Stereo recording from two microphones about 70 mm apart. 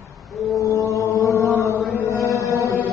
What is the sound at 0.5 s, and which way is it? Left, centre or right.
Music, left.